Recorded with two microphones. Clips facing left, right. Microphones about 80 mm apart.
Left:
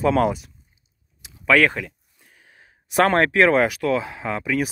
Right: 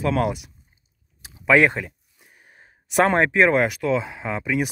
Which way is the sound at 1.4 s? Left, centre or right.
Centre.